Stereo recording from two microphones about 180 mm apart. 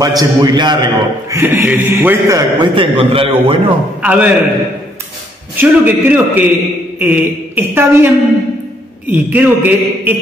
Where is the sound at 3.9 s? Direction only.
5° right (ahead or behind).